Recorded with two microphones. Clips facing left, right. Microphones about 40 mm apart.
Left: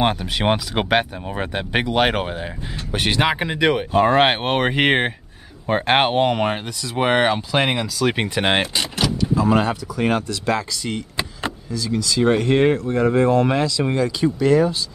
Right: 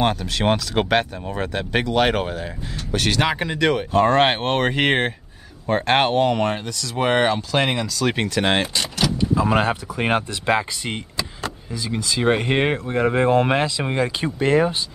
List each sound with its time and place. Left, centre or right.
0.0 s speech: centre
9.3 s speech: centre
9.9 s speech: right